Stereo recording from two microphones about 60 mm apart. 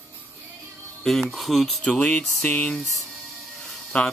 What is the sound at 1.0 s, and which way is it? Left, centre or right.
Speech, centre.